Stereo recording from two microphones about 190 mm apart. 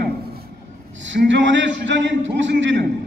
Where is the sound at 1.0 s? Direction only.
70° right (ahead or behind).